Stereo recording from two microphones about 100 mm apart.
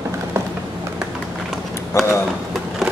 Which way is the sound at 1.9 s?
30° left (ahead or behind).